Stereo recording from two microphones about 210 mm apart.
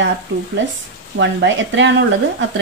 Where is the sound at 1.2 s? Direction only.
60° right (ahead or behind).